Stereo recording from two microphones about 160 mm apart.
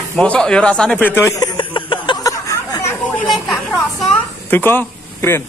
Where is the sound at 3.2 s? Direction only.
Centre (ahead or behind).